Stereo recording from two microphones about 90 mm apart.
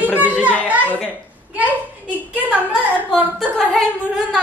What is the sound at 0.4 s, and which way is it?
Children playing, 15° right (ahead or behind).